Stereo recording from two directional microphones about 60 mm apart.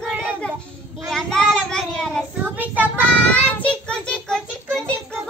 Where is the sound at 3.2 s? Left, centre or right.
Left.